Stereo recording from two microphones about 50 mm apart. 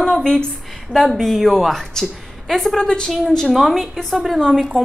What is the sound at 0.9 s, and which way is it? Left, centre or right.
A woman's voice, centre.